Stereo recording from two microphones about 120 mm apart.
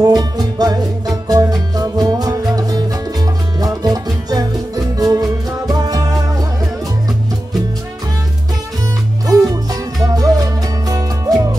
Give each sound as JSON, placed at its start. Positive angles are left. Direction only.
{"t": 0.0, "sound": "music", "side_deg": -35}
{"t": 9.3, "sound": "music", "side_deg": -30}